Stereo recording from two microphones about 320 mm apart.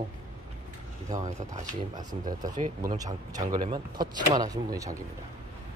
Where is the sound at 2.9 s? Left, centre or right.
Centre.